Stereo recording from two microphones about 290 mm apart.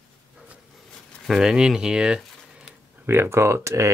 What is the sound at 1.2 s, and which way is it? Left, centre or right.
Speech, centre.